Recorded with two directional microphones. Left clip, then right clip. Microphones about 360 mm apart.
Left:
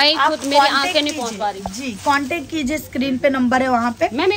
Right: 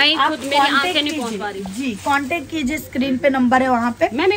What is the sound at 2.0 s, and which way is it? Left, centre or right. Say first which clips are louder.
A woman's voice: left 1 dB; centre.